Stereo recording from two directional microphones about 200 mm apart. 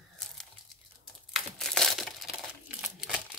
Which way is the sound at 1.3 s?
Centre (ahead or behind).